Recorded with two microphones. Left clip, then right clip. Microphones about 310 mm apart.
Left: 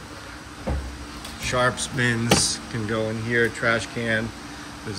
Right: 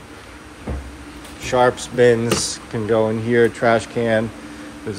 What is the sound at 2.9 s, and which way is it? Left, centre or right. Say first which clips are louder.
Speech: right 7 dB; right.